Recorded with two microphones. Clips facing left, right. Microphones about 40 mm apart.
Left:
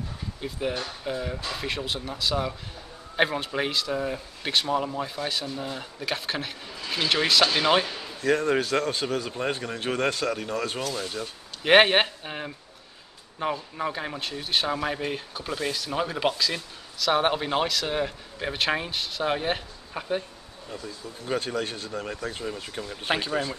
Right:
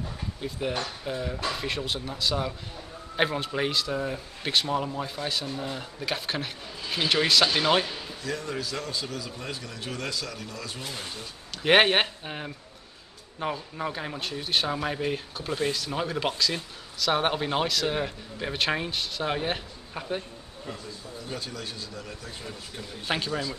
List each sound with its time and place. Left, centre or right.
0.4 s speech: centre
8.2 s a man's voice: left
10.8 s speech: right
11.6 s speech: centre
21.2 s a man's voice: left
23.1 s speech: centre